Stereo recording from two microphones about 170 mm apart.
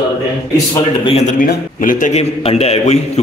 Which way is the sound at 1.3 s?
50° left (ahead or behind).